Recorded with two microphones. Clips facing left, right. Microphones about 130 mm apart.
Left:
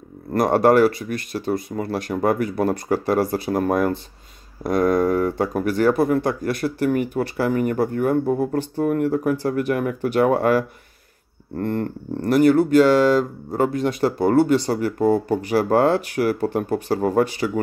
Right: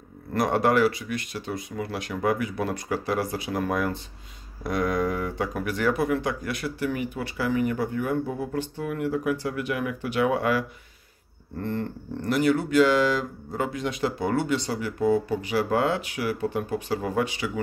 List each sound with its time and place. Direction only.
0.3 s speech: 45° left (ahead or behind)